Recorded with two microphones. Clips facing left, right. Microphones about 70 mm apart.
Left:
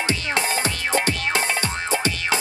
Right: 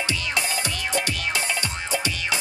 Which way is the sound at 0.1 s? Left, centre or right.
Left.